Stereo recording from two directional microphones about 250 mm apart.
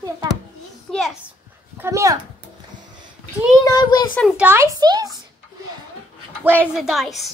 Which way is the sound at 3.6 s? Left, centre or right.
Centre.